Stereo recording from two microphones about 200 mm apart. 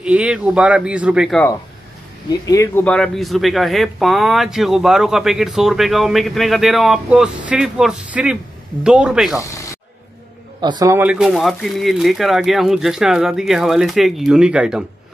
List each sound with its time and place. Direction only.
0.0 s speech: 5° right (ahead or behind)
2.4 s speech: 15° left (ahead or behind); by 9.4 s 5° right (ahead or behind)
9.4 s speech: 15° left (ahead or behind)
10.6 s speech: 20° right (ahead or behind); by 14.9 s 5° right (ahead or behind)